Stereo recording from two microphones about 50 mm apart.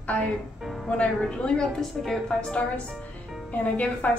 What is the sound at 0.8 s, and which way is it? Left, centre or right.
A woman's voice, left.